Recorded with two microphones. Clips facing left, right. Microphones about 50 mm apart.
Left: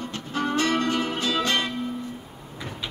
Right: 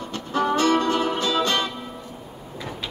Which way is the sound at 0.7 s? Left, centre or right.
Right.